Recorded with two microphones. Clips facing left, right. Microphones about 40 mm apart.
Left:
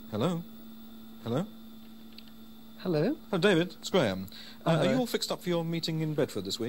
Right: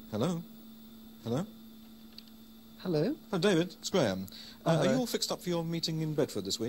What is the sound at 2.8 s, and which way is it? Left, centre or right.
Speech, left.